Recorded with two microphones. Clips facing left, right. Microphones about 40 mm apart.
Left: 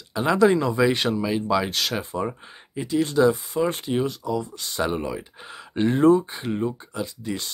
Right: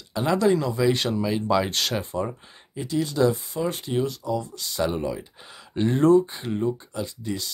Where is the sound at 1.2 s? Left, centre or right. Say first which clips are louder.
Even; centre.